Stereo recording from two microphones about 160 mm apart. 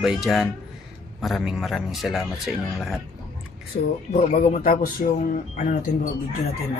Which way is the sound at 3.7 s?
60° left (ahead or behind).